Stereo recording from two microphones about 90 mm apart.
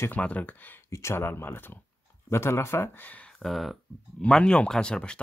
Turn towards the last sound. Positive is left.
turn(degrees=10)  # may be behind; listen again after turning